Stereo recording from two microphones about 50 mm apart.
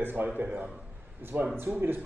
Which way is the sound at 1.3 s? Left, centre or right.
Right.